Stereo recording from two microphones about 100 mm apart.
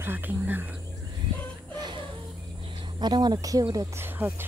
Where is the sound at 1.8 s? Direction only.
50° right (ahead or behind).